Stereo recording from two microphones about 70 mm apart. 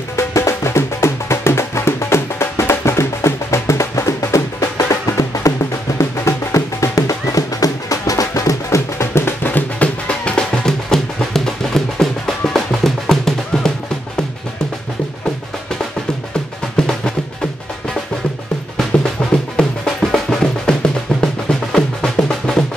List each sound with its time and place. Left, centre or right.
0.1 s music: left; by 13.7 s centre
16.7 s music: centre
19.5 s music: centre